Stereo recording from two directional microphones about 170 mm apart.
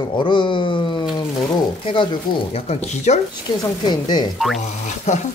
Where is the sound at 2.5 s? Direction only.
40° left (ahead or behind).